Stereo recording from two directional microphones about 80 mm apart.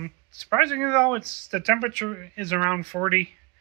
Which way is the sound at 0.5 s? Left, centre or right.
Centre.